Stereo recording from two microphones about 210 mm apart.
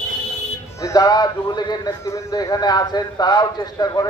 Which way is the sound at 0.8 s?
15° left (ahead or behind).